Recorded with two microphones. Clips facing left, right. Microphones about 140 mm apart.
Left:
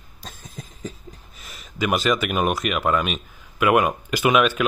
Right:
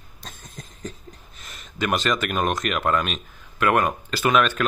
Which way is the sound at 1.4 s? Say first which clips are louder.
Left 2 dB; 5° left (ahead or behind).